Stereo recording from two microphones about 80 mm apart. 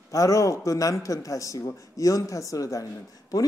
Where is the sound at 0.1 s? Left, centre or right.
Left.